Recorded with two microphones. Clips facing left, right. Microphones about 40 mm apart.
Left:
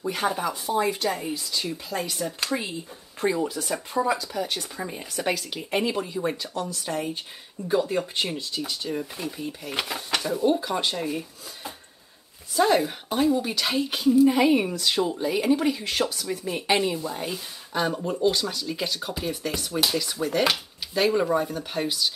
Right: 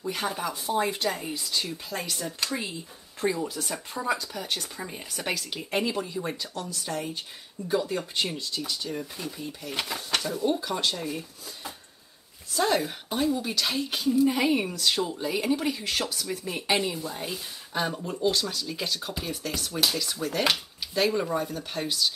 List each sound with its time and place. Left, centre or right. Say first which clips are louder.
0.1 s speech: left 4 dB; centre; by 11.1 s left
12.5 s speech: left 4 dB; centre
17.9 s speech: left 5 dB; centre
18.2 s speech: left 2 dB; centre